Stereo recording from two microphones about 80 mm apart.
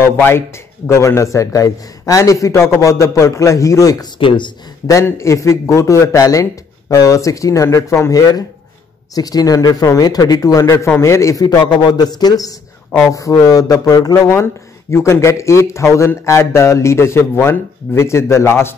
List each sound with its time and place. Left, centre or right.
0.0 s speech: left
4.2 s speech: left
5.1 s speech: left
11.7 s a man's voice: left
13.0 s speech: left
14.2 s speech: left